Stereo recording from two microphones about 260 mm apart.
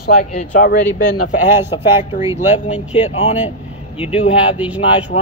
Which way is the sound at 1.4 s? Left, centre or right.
Centre.